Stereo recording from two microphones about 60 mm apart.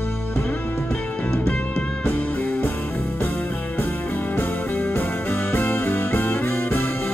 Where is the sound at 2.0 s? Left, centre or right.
Left.